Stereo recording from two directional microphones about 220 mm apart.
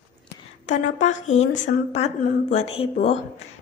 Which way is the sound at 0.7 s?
30° left (ahead or behind).